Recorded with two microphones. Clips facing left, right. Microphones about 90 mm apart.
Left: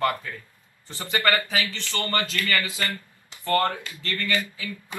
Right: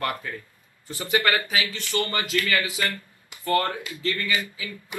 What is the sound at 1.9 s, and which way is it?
A man's voice, 20° right (ahead or behind).